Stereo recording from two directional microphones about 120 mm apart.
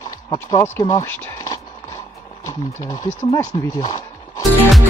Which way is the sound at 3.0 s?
90° left.